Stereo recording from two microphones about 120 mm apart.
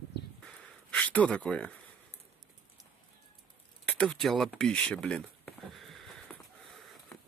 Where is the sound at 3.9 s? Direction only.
5° left (ahead or behind).